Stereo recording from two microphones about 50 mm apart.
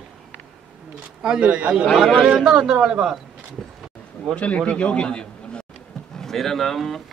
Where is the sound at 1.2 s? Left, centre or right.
Centre.